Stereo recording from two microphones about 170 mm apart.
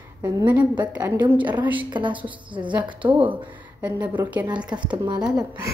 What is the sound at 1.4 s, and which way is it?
A woman's voice, 25° right (ahead or behind).